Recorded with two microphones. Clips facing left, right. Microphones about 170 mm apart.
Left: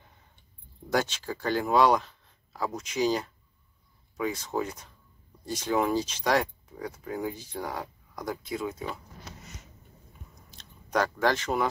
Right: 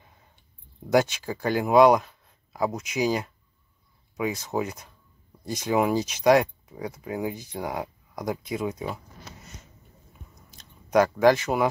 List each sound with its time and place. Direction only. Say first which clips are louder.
0.9 s speech: right 6 dB; 10° right (ahead or behind)
10.6 s speech: right 7 dB; 10° right (ahead or behind)